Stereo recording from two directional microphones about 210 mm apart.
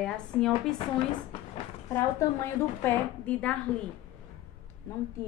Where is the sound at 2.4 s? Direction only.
10° left (ahead or behind).